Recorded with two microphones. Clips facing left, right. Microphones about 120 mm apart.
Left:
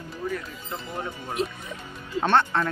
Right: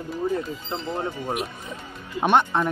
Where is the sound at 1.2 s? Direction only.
15° right (ahead or behind).